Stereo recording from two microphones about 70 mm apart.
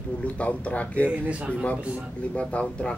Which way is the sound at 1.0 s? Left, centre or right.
Centre.